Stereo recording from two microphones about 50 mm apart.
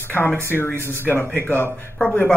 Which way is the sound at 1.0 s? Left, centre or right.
Left.